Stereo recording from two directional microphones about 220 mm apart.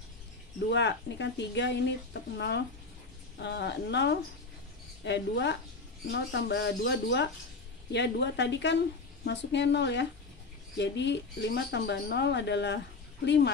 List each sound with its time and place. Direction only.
0.7 s speech: 55° left (ahead or behind)